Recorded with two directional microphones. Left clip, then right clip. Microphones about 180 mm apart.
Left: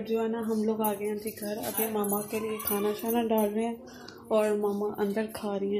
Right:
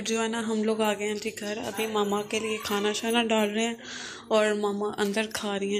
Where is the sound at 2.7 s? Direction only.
5° right (ahead or behind).